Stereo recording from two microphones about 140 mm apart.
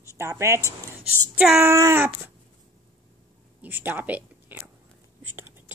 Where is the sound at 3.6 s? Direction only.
10° right (ahead or behind).